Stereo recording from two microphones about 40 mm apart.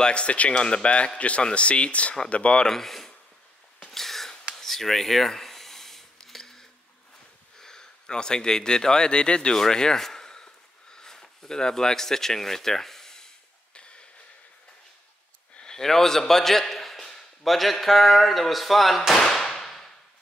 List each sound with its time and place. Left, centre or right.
0.0 s a man's voice: left
2.6 s speech: centre
3.9 s a sound: centre
7.5 s speech: centre
15.6 s a man's voice: centre
19.1 s firecracker: centre